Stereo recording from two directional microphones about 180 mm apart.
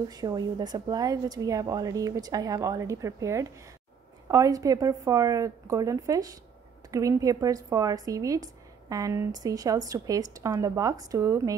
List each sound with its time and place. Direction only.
0.1 s a woman's voice: 20° right (ahead or behind)